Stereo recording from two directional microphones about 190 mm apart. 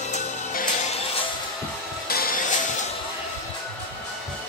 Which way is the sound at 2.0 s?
50° left (ahead or behind).